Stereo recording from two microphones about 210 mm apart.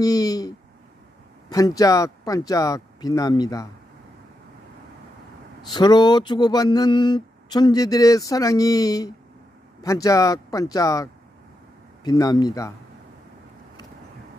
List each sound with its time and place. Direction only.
0.0 s speech: 15° left (ahead or behind)
5.7 s speech: 20° left (ahead or behind)